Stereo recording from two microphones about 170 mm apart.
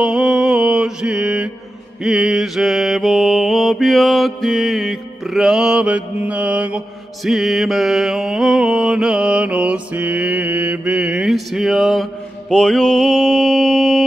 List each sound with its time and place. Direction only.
0.0 s mantra: 5° right (ahead or behind)